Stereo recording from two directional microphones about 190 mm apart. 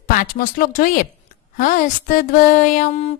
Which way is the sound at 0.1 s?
50° left (ahead or behind).